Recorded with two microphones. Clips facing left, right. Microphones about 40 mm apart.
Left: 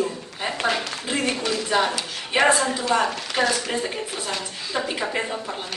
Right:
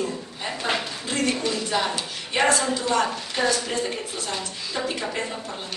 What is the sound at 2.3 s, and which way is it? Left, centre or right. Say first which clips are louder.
A woman's voice: left 2 dB; centre.